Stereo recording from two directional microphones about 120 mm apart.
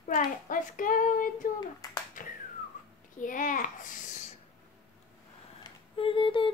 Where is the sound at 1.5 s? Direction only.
35° left (ahead or behind).